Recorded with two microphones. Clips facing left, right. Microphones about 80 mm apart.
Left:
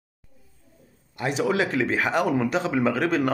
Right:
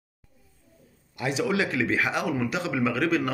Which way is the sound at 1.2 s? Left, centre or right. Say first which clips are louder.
Left 2 dB; left.